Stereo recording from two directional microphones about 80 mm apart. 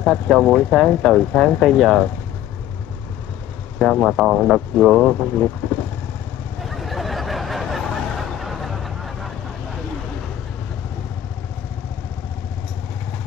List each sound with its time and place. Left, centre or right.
0.0 s speech: centre
3.8 s speech: centre
5.6 s motorcycle: left
6.8 s a sound: centre